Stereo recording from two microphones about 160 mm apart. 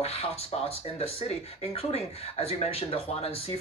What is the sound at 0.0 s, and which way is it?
Speech, 40° left (ahead or behind).